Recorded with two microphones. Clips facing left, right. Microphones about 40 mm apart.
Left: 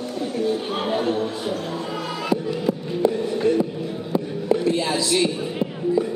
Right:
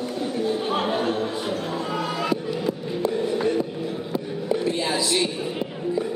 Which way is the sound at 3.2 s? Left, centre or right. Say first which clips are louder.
Left 2 dB; centre.